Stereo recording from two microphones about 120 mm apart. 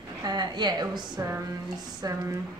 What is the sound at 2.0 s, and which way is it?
Speech, 30° right (ahead or behind).